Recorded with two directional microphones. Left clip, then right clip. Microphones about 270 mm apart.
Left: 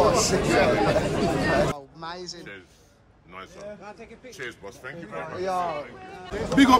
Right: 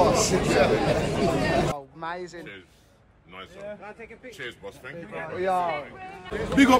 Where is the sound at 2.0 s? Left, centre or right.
Right.